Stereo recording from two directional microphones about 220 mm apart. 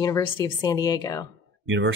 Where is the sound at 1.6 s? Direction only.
60° right (ahead or behind).